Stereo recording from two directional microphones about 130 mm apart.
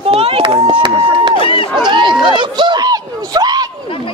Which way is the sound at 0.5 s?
30° right (ahead or behind).